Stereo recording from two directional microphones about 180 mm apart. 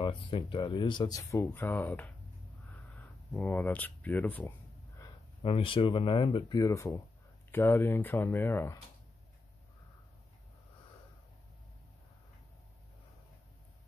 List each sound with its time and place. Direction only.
0.0 s speech: 25° left (ahead or behind); by 2.0 s 10° left (ahead or behind)
2.7 s a sound: 10° left (ahead or behind)
5.4 s speech: 30° left (ahead or behind); by 8.7 s 10° left (ahead or behind)